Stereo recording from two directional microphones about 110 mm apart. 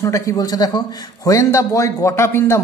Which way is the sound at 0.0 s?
30° left (ahead or behind).